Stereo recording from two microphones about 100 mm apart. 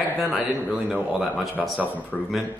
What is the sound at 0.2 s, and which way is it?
A man's voice, centre (ahead or behind).